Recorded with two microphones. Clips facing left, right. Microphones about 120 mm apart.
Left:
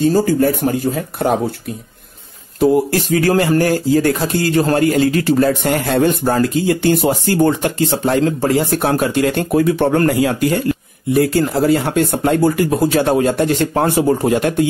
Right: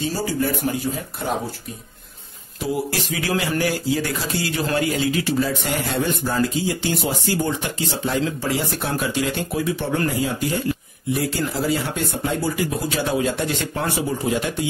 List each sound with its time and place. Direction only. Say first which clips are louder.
0.0 s speech: left 10 dB; 50° left (ahead or behind)
2.6 s speech: left 11 dB; 45° left (ahead or behind)